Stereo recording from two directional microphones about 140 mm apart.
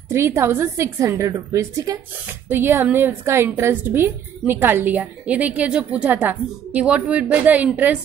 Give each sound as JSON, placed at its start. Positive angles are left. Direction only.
{"t": 0.1, "sound": "a woman's voice", "side_deg": -20}